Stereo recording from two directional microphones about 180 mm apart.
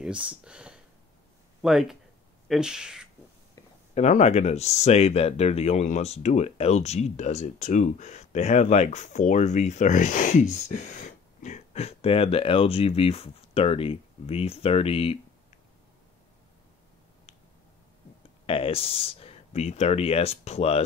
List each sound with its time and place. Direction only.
0.0 s speech: 5° right (ahead or behind)
3.9 s speech: 40° left (ahead or behind)
18.4 s speech: 30° left (ahead or behind)